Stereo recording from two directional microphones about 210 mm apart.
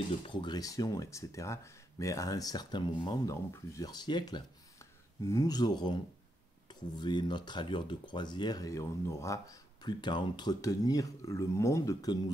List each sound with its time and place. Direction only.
0.2 s speech: 20° left (ahead or behind)